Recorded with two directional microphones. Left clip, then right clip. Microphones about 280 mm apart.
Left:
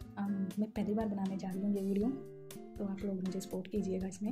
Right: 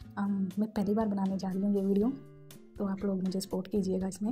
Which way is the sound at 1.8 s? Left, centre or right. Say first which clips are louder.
Right 6 dB; centre.